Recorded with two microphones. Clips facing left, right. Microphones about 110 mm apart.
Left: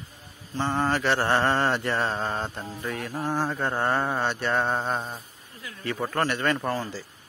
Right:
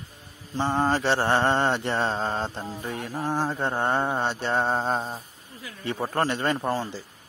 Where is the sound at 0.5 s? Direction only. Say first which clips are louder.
Right 2 dB; 20° right (ahead or behind).